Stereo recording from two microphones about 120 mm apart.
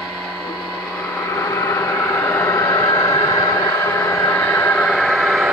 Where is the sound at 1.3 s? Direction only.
25° left (ahead or behind).